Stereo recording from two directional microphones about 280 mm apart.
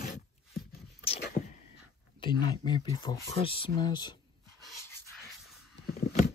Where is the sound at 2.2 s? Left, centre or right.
Centre.